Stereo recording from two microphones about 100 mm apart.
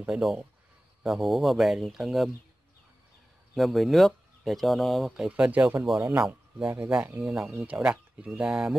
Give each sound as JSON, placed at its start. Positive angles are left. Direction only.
{"t": 0.0, "sound": "speech", "side_deg": -5}
{"t": 3.5, "sound": "speech", "side_deg": 0}
{"t": 5.3, "sound": "speech", "side_deg": -15}